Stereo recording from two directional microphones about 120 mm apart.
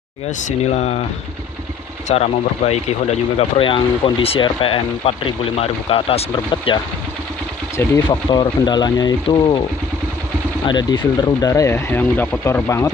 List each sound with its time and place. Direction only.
0.4 s speech: 75° left (ahead or behind)
2.0 s speech: 60° left (ahead or behind); by 6.8 s 40° left (ahead or behind)
7.7 s speech: 25° left (ahead or behind)
8.3 s speech: 35° left (ahead or behind)